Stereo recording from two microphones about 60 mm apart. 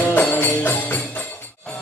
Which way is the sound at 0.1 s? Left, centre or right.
Left.